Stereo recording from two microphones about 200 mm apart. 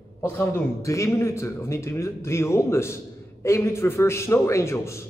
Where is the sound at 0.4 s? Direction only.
10° left (ahead or behind).